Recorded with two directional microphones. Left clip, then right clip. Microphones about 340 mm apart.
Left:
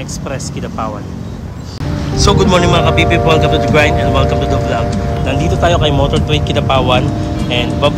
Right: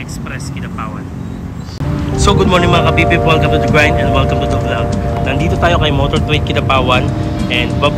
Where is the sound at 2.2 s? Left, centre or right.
Centre.